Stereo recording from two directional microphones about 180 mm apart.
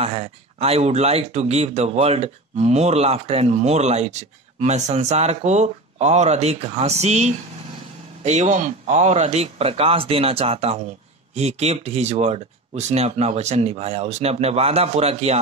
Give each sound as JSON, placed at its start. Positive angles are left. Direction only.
{"t": 0.0, "sound": "speech", "side_deg": -35}